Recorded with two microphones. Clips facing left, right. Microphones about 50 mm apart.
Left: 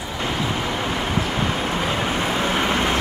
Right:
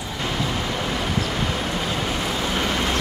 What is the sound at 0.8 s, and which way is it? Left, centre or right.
Vehicle, centre.